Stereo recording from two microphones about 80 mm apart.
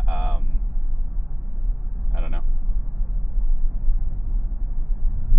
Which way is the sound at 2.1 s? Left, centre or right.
Right.